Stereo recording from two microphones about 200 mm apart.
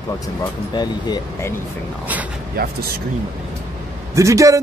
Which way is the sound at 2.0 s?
5° right (ahead or behind).